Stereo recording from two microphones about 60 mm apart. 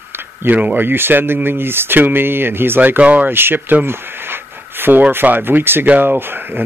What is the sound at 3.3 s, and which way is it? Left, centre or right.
Speech, right.